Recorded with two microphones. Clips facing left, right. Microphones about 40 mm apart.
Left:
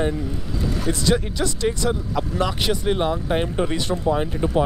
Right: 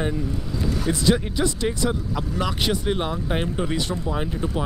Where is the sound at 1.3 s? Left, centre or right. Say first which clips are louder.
Even; centre.